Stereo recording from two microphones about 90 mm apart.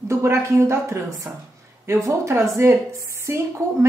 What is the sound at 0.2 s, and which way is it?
Speech, 30° right (ahead or behind).